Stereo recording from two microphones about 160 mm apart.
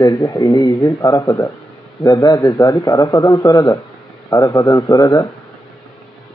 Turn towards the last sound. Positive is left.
turn(degrees=20)  # may be behind; listen again after turning